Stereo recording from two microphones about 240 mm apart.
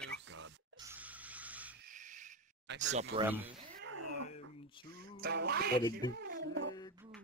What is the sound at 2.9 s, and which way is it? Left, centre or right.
Speech, right.